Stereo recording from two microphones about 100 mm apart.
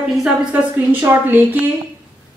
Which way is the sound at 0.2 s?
10° right (ahead or behind).